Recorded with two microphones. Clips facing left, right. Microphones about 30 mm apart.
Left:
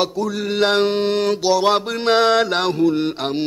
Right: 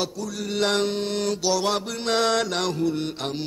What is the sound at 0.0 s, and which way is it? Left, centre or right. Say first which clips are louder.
Mantra: left 8 dB; left.